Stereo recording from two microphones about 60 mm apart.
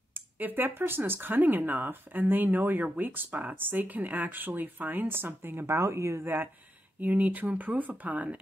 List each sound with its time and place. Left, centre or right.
0.1 s speech: right
5.8 s speech: right
7.0 s speech: right